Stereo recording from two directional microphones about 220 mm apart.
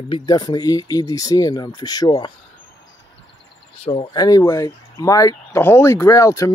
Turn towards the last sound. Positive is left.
turn(degrees=15)  # may be behind; listen again after turning